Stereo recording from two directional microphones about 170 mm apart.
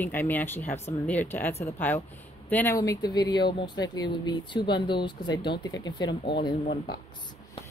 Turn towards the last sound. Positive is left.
turn(degrees=30)  # may be behind; listen again after turning